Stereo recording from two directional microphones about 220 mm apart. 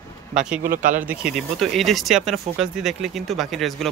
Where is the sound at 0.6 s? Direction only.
40° right (ahead or behind).